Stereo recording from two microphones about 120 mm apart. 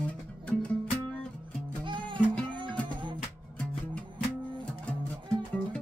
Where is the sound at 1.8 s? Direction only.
45° right (ahead or behind).